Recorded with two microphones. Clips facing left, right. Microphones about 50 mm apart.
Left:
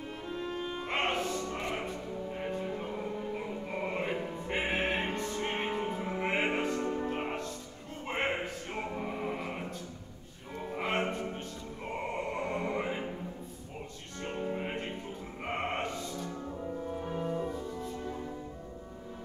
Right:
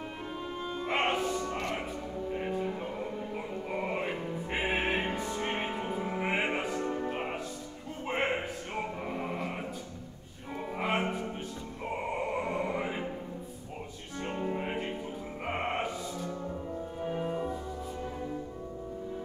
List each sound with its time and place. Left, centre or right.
0.8 s music: centre
3.3 s opera: centre
8.7 s music: centre
10.7 s music: centre
14.2 s music: centre